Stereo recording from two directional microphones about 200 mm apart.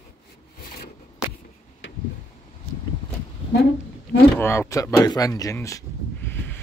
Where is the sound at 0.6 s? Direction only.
45° left (ahead or behind).